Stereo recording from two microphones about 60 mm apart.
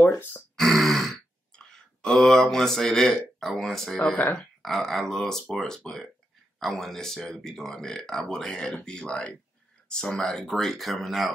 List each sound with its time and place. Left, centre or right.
0.0 s speech: left
0.6 s grunt: centre
1.5 s speech: centre